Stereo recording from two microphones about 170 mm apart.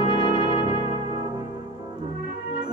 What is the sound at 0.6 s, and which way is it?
Music, 30° left (ahead or behind).